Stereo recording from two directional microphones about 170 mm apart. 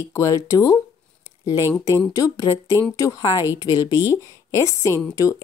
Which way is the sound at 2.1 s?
20° left (ahead or behind).